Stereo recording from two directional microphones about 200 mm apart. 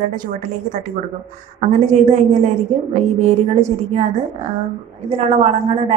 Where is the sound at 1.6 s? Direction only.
40° right (ahead or behind).